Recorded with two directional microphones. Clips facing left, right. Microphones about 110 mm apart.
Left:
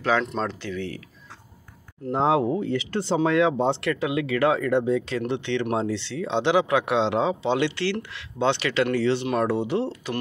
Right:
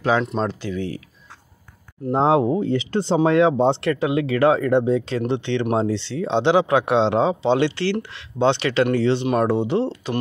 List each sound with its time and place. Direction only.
0.1 s speech: 15° right (ahead or behind)
2.1 s speech: 30° right (ahead or behind)